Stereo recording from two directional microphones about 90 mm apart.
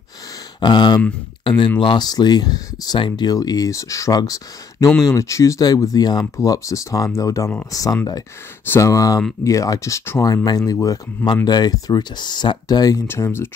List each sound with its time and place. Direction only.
0.6 s speech: 60° left (ahead or behind); by 8.2 s 40° left (ahead or behind)
8.6 s speech: 25° left (ahead or behind)
8.9 s speech: 40° left (ahead or behind)
10.2 s speech: 45° left (ahead or behind)
13.0 s speech: 25° left (ahead or behind)